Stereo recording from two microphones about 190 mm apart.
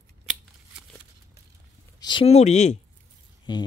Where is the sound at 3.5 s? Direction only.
25° left (ahead or behind).